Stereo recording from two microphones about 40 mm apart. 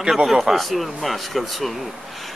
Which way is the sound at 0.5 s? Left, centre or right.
Centre.